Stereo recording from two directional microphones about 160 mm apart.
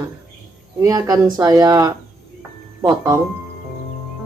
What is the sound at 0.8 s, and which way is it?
A woman's voice, 20° right (ahead or behind).